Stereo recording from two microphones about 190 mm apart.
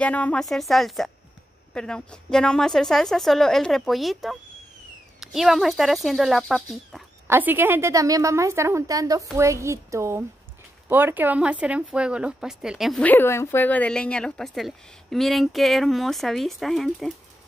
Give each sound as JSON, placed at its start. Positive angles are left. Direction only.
{"t": 0.0, "sound": "speech", "side_deg": 5}
{"t": 7.2, "sound": "a woman's voice", "side_deg": -10}